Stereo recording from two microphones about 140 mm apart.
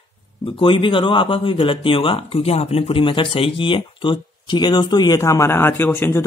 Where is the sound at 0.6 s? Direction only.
40° left (ahead or behind).